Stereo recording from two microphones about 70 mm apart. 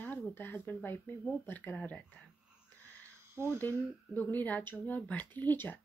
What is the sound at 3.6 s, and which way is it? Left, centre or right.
Speech, left.